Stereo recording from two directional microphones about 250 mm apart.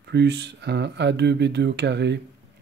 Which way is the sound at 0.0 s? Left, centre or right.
Right.